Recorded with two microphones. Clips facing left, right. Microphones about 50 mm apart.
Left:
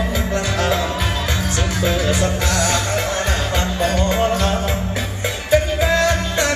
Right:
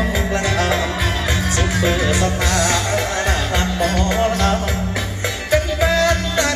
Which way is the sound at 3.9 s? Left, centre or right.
Right.